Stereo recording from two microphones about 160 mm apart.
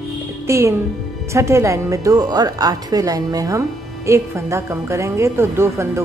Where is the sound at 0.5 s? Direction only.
15° right (ahead or behind).